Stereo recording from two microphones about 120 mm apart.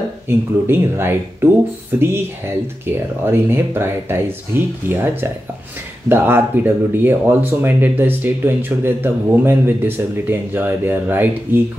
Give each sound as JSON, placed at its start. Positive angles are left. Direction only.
{"t": 0.3, "sound": "speech", "side_deg": -20}